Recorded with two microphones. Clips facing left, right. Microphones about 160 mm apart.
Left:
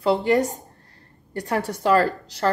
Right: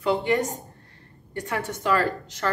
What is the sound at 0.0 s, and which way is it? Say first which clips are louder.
A woman's voice: left 4 dB; 35° left (ahead or behind).